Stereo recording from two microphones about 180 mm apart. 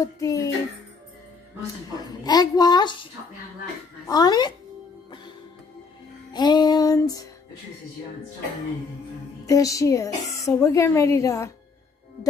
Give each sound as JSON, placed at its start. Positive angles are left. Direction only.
{"t": 0.0, "sound": "speech", "side_deg": 20}
{"t": 2.2, "sound": "music", "side_deg": 20}
{"t": 4.1, "sound": "music", "side_deg": 20}
{"t": 6.3, "sound": "music", "side_deg": 25}
{"t": 9.5, "sound": "speech", "side_deg": 20}